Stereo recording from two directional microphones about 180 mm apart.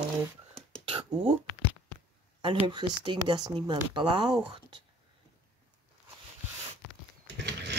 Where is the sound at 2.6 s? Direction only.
25° right (ahead or behind).